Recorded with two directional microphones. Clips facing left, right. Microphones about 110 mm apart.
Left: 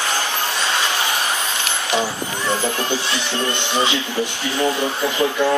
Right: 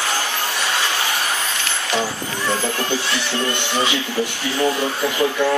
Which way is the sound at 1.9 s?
20° left (ahead or behind).